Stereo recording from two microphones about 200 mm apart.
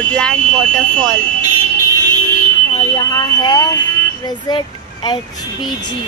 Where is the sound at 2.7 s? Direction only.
20° left (ahead or behind).